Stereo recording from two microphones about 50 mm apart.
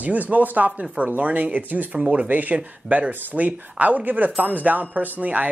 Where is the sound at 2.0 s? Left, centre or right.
Right.